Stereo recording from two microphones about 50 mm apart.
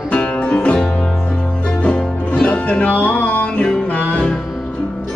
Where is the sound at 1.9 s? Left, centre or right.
Centre; by 3.4 s left.